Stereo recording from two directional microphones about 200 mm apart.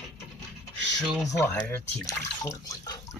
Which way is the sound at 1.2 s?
15° left (ahead or behind).